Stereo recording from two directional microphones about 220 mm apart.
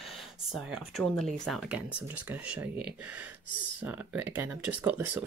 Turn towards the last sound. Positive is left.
turn(degrees=-10)  # may be behind; listen again after turning